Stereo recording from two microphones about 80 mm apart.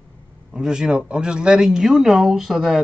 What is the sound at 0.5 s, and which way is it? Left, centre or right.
Speech, centre.